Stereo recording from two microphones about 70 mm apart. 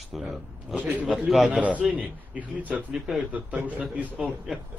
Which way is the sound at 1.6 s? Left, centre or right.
Centre.